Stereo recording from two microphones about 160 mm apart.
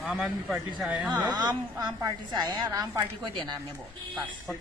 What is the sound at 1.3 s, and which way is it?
A woman's voice, 25° right (ahead or behind).